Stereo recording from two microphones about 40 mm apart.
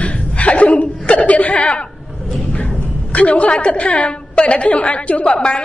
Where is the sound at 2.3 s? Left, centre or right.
Left.